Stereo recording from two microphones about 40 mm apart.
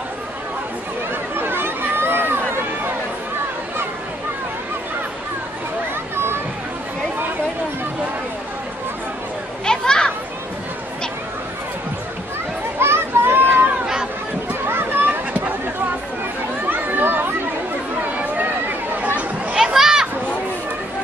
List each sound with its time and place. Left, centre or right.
1.4 s chatter: right
6.1 s a sound: right
9.7 s children playing: centre
12.7 s children playing: right
14.5 s a sound: right
16.6 s chatter: right
18.1 s chatter: right
19.5 s children playing: centre